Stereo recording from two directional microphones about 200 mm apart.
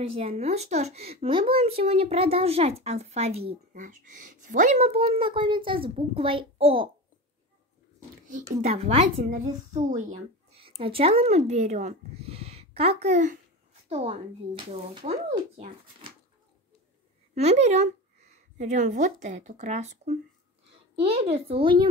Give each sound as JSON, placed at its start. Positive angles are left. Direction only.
{"t": 0.1, "sound": "speech", "side_deg": -30}
{"t": 8.5, "sound": "speech", "side_deg": -35}
{"t": 17.3, "sound": "a woman's voice", "side_deg": -35}